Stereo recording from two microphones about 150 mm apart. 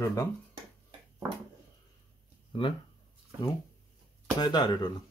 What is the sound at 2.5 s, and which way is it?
Speech, 35° left (ahead or behind).